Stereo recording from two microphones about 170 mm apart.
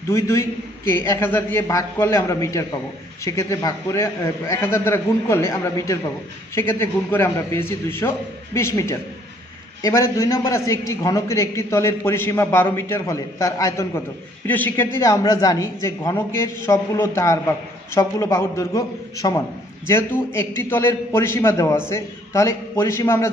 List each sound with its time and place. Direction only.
0.1 s a man's voice: 15° left (ahead or behind)